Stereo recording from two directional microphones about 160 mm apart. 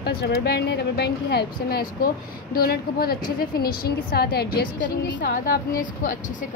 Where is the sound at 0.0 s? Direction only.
85° left.